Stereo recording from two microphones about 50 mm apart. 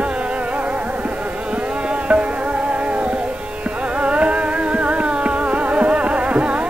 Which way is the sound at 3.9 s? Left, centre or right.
Right.